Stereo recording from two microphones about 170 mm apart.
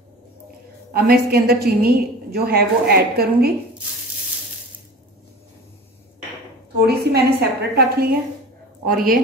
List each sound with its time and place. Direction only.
0.9 s a woman's voice: 65° right (ahead or behind)
7.0 s a woman's voice: 75° right (ahead or behind); by 9.2 s 55° right (ahead or behind)